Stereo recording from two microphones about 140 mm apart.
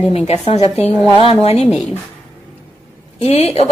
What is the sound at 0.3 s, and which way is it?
A woman's voice, 50° left (ahead or behind).